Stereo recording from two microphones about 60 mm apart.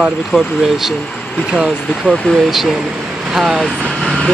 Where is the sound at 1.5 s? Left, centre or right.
Centre.